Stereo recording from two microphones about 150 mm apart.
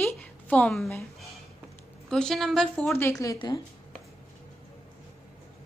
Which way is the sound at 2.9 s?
20° left (ahead or behind).